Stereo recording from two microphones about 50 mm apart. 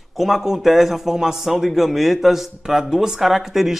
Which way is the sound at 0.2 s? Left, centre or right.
Centre.